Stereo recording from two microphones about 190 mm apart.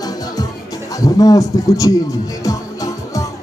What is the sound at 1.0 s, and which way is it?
Speech, 20° left (ahead or behind).